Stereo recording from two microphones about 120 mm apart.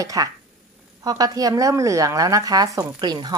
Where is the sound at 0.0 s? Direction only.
30° right (ahead or behind).